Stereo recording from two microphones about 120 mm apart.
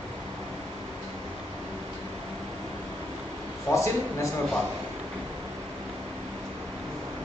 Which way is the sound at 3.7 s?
25° left (ahead or behind).